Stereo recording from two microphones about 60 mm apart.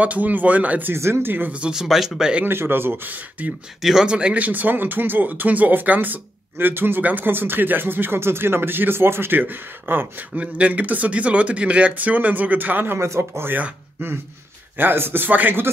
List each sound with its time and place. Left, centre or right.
0.0 s speech: right
0.9 s speech: right
1.5 s speech: centre
1.8 s speech: centre
2.4 s speech: right
3.8 s speech: centre; by 10.4 s right
10.4 s speech: right
14.8 s speech: right